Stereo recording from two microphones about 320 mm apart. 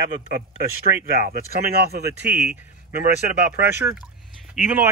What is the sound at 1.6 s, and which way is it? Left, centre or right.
Speech, right.